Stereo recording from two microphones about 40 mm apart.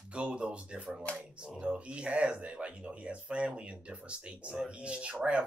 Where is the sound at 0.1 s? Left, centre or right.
Right.